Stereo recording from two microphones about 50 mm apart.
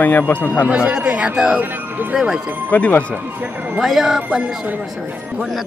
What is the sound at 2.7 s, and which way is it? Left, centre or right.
Speech, left.